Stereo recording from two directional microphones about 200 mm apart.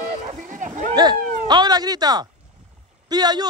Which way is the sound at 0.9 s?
20° right (ahead or behind).